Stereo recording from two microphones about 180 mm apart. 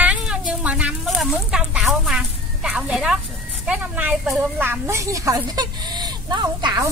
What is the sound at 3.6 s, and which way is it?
A woman's voice, 10° right (ahead or behind).